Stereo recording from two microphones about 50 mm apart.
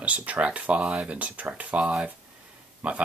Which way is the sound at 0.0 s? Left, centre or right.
Right.